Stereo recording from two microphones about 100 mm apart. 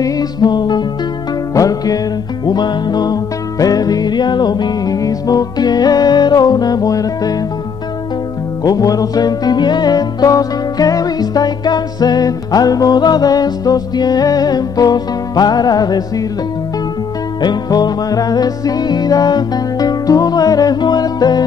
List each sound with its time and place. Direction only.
0.0 s music: 40° left (ahead or behind)
8.6 s music: 40° left (ahead or behind)
17.4 s music: 45° left (ahead or behind)